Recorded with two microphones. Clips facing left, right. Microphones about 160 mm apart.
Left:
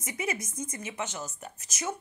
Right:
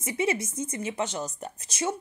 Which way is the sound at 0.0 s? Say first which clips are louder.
Right 7 dB; 30° right (ahead or behind).